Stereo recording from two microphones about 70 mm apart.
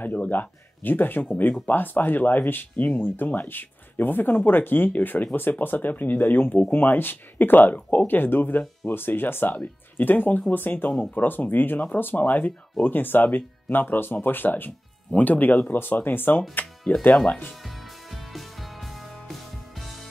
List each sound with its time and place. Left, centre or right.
0.0 s speech: left
17.6 s music: centre